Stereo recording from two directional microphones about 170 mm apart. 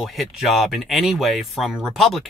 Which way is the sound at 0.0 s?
Centre (ahead or behind).